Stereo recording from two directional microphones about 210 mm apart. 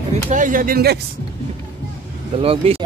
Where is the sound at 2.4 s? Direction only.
25° right (ahead or behind).